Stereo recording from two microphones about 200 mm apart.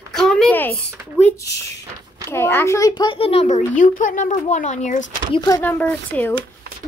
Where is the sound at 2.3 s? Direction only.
10° left (ahead or behind); by 5.0 s 35° left (ahead or behind).